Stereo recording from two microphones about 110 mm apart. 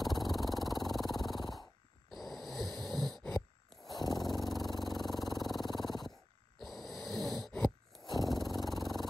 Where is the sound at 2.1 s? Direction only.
Centre (ahead or behind).